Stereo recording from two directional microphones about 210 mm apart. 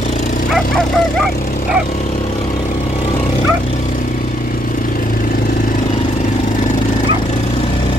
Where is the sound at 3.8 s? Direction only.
40° left (ahead or behind).